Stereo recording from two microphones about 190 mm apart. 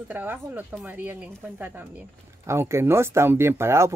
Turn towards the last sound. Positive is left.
turn(degrees=-15)  # may be behind; listen again after turning